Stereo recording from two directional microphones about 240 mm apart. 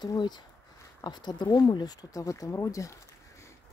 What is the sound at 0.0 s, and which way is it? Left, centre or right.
Speech, centre.